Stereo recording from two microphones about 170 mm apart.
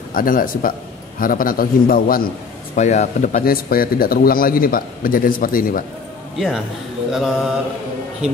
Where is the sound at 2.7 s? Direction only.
45° left (ahead or behind).